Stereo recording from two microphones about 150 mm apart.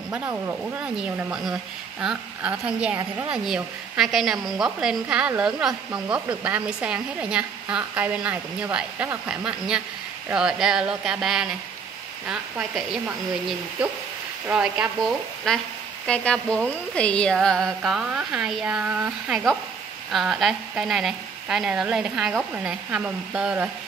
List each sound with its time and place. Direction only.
0.1 s a woman's voice: 15° right (ahead or behind)